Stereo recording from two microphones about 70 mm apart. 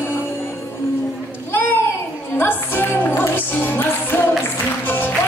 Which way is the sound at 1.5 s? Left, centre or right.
Left.